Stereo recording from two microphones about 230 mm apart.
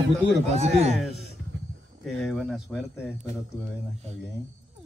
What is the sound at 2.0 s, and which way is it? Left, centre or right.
Speech, centre.